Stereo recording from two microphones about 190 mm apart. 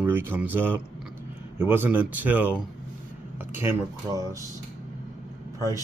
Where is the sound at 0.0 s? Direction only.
10° right (ahead or behind).